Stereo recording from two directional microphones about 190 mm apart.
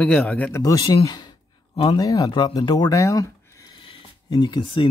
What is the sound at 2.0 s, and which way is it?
Speech, 20° left (ahead or behind).